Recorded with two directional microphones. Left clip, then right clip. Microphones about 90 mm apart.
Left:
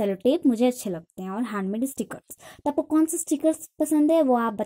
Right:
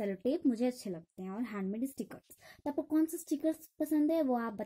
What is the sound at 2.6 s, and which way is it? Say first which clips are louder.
Speech: left 10 dB; 30° left (ahead or behind).